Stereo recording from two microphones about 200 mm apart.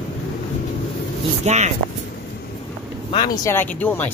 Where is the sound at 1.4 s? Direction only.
35° right (ahead or behind).